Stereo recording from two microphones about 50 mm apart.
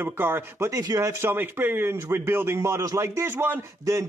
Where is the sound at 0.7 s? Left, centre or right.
Right.